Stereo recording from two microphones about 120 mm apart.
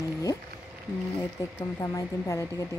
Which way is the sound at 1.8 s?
25° left (ahead or behind).